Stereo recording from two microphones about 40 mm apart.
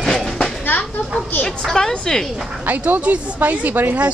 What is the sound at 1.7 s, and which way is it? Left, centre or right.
Speech, centre.